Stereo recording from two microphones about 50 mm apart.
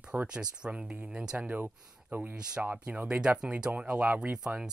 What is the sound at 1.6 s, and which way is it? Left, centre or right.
Speech, right.